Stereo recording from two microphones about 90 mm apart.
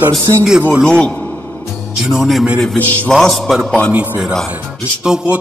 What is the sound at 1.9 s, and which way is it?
A man's voice, 5° right (ahead or behind).